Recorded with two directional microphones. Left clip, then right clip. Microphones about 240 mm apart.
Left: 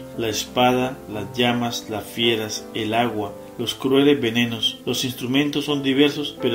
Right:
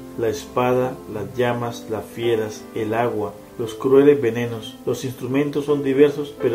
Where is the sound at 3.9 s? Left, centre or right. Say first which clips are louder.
Right 4 dB; left.